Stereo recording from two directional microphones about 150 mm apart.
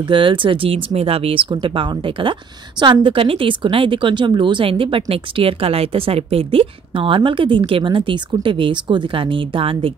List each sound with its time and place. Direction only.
0.0 s speech: 35° right (ahead or behind)